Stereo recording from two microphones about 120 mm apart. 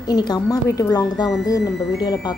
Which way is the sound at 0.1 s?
35° left (ahead or behind).